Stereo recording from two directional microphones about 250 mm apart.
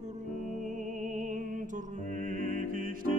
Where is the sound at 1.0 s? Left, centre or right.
Right.